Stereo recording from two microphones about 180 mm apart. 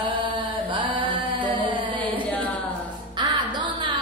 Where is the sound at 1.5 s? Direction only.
25° right (ahead or behind).